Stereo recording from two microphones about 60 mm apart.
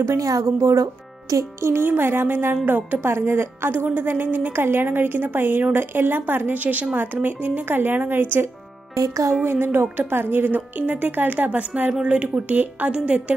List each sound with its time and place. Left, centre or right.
0.0 s a woman's voice: right
1.6 s a woman's voice: right
8.9 s a woman's voice: right
9.4 s a woman's voice: right